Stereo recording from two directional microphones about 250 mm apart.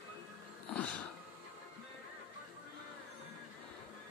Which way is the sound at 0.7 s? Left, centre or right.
Centre.